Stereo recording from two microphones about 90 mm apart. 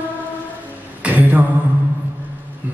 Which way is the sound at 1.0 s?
20° right (ahead or behind).